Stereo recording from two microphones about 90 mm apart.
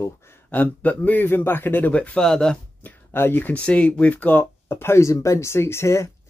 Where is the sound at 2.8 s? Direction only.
25° left (ahead or behind).